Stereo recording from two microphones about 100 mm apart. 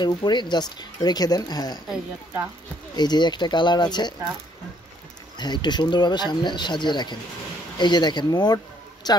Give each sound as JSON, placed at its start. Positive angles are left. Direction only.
{"t": 0.0, "sound": "speech", "side_deg": 45}
{"t": 3.0, "sound": "speech", "side_deg": 45}
{"t": 5.4, "sound": "speech", "side_deg": 45}